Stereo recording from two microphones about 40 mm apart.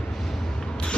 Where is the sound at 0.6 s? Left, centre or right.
Centre.